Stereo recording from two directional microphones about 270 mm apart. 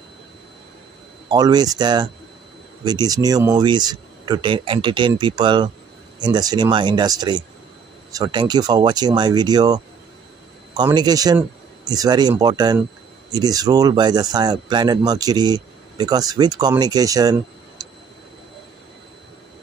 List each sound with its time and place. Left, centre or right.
1.3 s speech: centre